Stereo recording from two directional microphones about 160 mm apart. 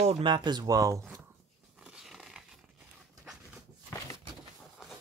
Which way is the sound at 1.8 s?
5° right (ahead or behind).